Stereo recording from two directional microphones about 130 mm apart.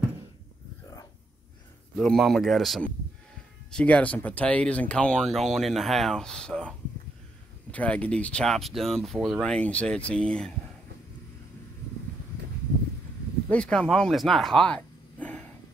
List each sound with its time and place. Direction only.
2.0 s speech: 5° left (ahead or behind)
3.7 s speech: 10° left (ahead or behind)
7.7 s speech: 10° left (ahead or behind)
13.5 s speech: 5° left (ahead or behind)